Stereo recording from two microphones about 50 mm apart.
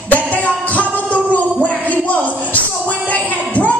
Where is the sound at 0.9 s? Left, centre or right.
Left.